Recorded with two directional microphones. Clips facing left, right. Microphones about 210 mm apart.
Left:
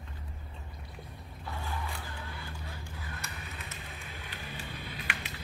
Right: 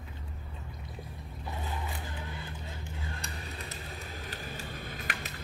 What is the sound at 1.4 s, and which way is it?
Vehicle, 20° right (ahead or behind).